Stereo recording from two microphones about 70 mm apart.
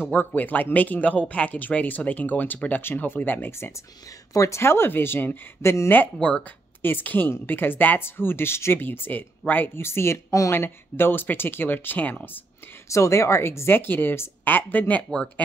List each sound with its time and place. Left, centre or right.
0.1 s speech: left
4.3 s a woman's voice: left
6.1 s speech: centre
6.8 s speech: left
9.8 s a woman's voice: left
10.6 s speech: left
12.9 s a woman's voice: left